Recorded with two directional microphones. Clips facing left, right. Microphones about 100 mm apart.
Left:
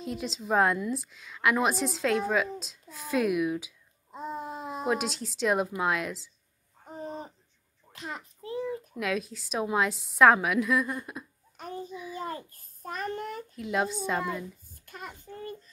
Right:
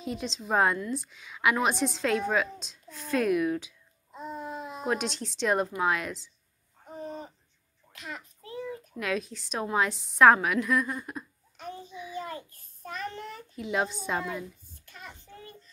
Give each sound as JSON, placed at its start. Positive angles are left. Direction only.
{"t": 0.0, "sound": "a woman's voice", "side_deg": 0}
{"t": 4.1, "sound": "babbling", "side_deg": 40}
{"t": 4.8, "sound": "a woman's voice", "side_deg": 5}
{"t": 7.0, "sound": "hoot", "side_deg": 35}
{"t": 7.9, "sound": "a sound", "side_deg": 35}
{"t": 9.0, "sound": "a woman's voice", "side_deg": 0}
{"t": 11.5, "sound": "child singing", "side_deg": 40}
{"t": 11.9, "sound": "a sound", "side_deg": 0}
{"t": 12.2, "sound": "child singing", "side_deg": 35}
{"t": 13.6, "sound": "a woman's voice", "side_deg": 0}
{"t": 14.9, "sound": "child singing", "side_deg": 45}